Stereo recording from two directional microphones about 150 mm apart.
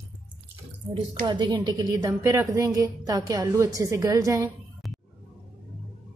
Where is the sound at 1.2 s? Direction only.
30° right (ahead or behind).